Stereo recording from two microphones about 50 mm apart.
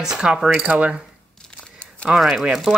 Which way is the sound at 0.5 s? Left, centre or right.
Right.